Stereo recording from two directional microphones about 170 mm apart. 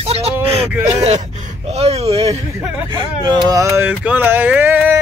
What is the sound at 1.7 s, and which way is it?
Speech, 40° right (ahead or behind).